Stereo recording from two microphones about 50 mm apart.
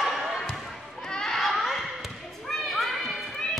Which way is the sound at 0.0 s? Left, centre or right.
Centre.